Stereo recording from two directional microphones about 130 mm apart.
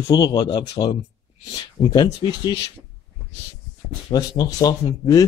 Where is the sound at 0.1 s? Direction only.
35° left (ahead or behind).